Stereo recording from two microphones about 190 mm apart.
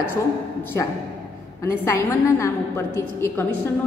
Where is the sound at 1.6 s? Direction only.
15° left (ahead or behind).